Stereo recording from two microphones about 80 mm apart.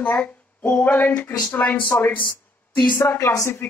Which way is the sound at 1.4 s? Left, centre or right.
Centre.